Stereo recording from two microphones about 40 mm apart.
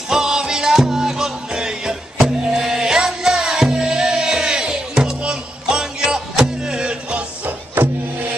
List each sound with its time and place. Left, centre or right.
0.1 s music: centre